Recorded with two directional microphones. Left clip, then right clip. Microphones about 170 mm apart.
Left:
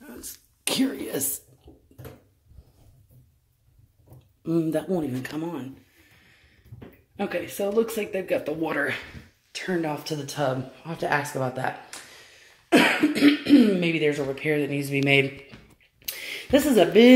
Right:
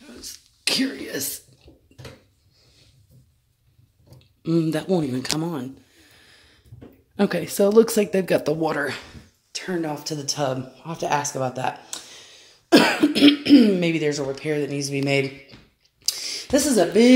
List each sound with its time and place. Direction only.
0.0 s a sound: 10° left (ahead or behind)
4.4 s speech: 20° right (ahead or behind)
5.4 s speech: 35° right (ahead or behind)
7.2 s speech: 55° right (ahead or behind)
8.6 s a woman's voice: 15° right (ahead or behind)
12.7 s cough: 30° right (ahead or behind)
13.7 s a woman's voice: 20° right (ahead or behind)
16.1 s a sound: centre (ahead or behind)